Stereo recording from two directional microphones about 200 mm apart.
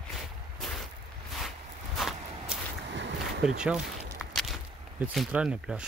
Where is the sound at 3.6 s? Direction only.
5° right (ahead or behind).